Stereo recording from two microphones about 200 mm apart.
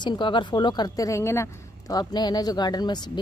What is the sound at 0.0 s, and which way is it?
Speech, 25° left (ahead or behind).